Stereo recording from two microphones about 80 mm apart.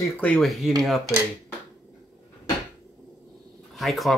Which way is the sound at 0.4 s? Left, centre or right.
Centre.